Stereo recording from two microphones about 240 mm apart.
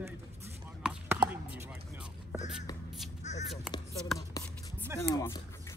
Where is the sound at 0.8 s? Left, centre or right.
Centre.